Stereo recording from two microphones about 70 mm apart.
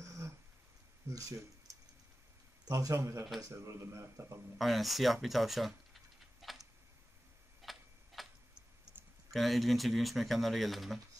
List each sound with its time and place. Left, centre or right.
0.0 s a sound: right
1.7 s tick-tock: right
2.7 s speech: right
4.6 s speech: centre
6.4 s tick-tock: centre
9.3 s speech: centre